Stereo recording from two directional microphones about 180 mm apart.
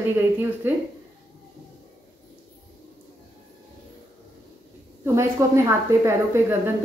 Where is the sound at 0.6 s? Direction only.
10° right (ahead or behind).